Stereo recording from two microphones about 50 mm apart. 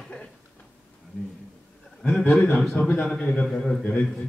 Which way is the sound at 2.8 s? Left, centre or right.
Left.